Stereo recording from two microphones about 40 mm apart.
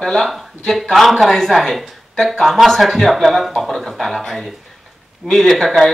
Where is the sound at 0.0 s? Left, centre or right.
Centre.